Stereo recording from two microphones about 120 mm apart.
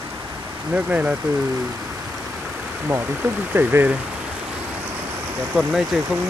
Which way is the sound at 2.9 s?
20° right (ahead or behind).